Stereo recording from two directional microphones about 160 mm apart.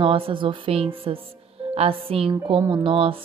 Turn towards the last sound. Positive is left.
turn(degrees=-35)  # may be behind; listen again after turning